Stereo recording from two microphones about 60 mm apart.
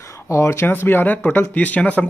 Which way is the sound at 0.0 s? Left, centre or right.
Left.